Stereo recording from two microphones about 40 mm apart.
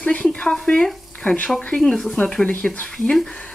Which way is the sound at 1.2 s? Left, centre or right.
Left.